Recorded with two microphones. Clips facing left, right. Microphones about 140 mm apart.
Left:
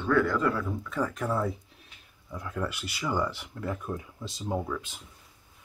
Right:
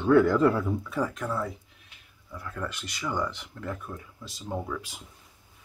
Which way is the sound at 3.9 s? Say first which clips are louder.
Left 5 dB; 25° left (ahead or behind).